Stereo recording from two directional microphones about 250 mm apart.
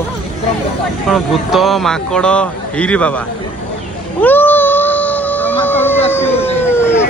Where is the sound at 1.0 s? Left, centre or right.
Centre.